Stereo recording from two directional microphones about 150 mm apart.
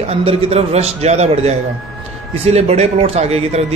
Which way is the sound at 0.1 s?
45° right (ahead or behind).